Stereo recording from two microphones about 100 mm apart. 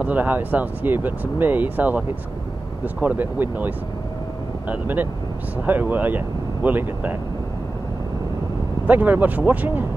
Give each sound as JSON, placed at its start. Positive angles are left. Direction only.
{"t": 0.0, "sound": "speech", "side_deg": -15}
{"t": 8.8, "sound": "speech", "side_deg": -15}